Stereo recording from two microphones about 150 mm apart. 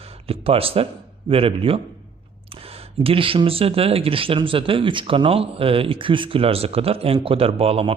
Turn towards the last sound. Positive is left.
turn(degrees=-40)  # may be behind; listen again after turning